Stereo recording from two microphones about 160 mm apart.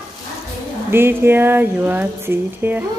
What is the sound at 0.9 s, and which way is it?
Speech, 15° right (ahead or behind).